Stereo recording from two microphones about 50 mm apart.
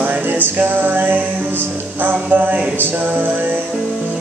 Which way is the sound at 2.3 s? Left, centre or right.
Right.